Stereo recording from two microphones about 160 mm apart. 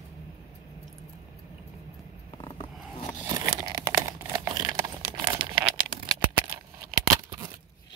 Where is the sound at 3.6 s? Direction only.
20° right (ahead or behind).